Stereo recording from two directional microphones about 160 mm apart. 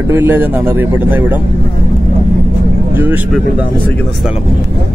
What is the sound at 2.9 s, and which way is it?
Speech, 10° right (ahead or behind).